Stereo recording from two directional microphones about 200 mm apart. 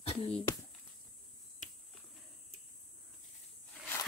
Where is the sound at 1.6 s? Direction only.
40° left (ahead or behind).